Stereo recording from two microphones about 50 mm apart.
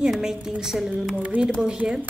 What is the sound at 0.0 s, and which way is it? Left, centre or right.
A woman's voice, centre.